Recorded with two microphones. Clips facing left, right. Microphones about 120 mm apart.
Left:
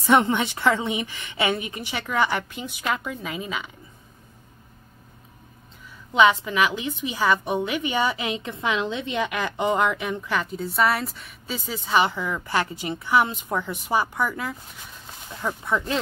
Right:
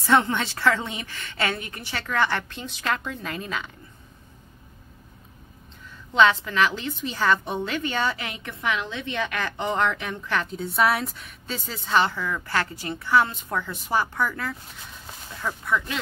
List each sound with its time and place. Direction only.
0.0 s a woman's voice: 15° left (ahead or behind)
6.1 s a woman's voice: 15° left (ahead or behind)